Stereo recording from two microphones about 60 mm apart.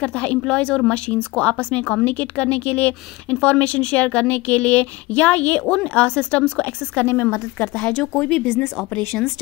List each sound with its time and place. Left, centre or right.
0.0 s speech: centre
7.1 s a woman's voice: left
7.5 s speech: left